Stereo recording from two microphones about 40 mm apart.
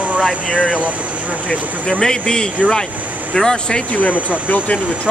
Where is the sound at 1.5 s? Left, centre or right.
Left.